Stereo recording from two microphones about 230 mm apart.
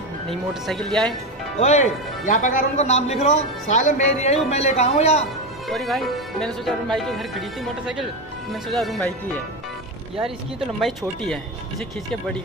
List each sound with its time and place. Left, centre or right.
0.3 s speech: centre
1.6 s a man's voice: left
5.7 s speech: centre
10.8 s speech: centre